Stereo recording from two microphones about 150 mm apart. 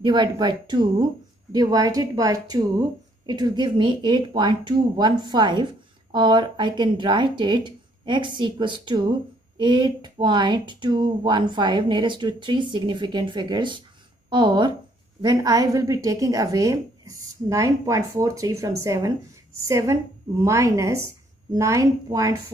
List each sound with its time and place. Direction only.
0.0 s speech: 30° right (ahead or behind)